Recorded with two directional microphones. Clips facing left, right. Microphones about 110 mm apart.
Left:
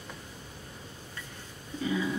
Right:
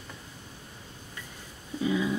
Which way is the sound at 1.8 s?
15° right (ahead or behind).